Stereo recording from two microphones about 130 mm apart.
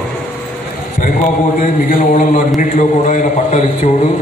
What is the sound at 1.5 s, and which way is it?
Speech, 90° left.